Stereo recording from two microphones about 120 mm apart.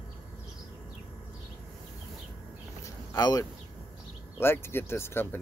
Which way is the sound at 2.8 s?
30° left (ahead or behind).